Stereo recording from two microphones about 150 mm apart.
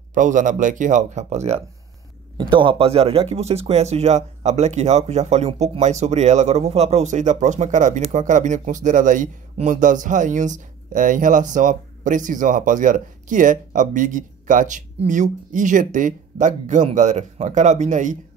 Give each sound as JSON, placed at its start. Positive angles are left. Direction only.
{"t": 0.1, "sound": "speech", "side_deg": -60}
{"t": 2.5, "sound": "speech", "side_deg": -35}